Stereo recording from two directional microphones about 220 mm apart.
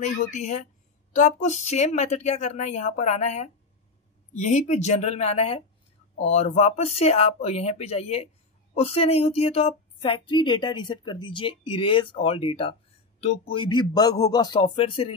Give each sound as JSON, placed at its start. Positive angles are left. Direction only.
{"t": 0.0, "sound": "a woman's voice", "side_deg": 30}